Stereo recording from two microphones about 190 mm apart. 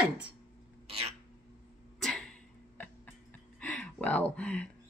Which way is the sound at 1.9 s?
5° left (ahead or behind).